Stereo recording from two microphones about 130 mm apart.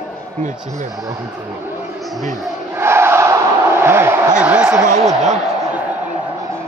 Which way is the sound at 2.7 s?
20° right (ahead or behind).